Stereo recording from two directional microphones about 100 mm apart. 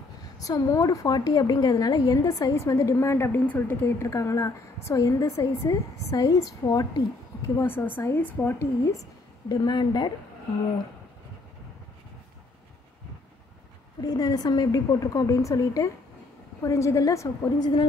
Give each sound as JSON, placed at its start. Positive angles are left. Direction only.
{"t": 0.2, "sound": "a woman's voice", "side_deg": 35}
{"t": 4.1, "sound": "a woman's voice", "side_deg": 35}
{"t": 8.8, "sound": "a woman's voice", "side_deg": 35}
{"t": 14.0, "sound": "a woman's voice", "side_deg": 40}